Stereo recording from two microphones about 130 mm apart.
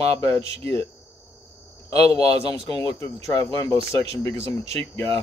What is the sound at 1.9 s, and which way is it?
A man's voice, 30° left (ahead or behind).